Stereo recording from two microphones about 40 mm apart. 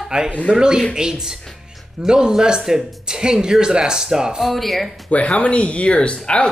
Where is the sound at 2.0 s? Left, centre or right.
Centre.